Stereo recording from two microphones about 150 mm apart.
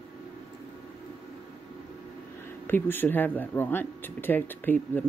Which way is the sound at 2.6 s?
15° left (ahead or behind).